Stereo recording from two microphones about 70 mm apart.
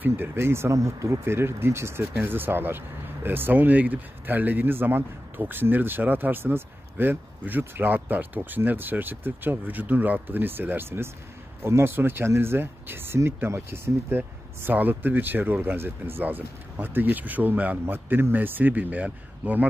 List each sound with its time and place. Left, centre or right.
0.0 s speech: right